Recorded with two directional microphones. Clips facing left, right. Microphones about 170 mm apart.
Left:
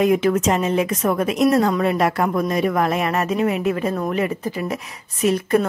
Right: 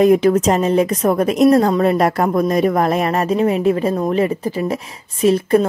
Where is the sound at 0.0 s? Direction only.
35° right (ahead or behind).